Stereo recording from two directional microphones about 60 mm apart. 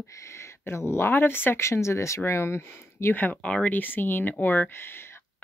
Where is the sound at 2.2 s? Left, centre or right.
Left.